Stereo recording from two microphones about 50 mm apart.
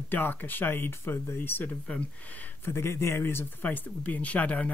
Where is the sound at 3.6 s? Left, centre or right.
Left.